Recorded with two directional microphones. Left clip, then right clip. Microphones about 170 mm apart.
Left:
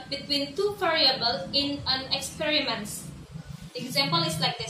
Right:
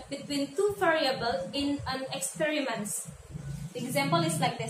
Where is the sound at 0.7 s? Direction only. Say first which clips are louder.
Left 5 dB; 5° right (ahead or behind).